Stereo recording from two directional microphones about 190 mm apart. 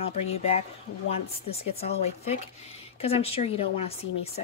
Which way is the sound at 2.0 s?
35° left (ahead or behind).